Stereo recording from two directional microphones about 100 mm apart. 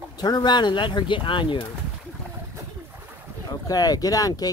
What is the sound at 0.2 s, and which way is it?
Speech, 45° left (ahead or behind).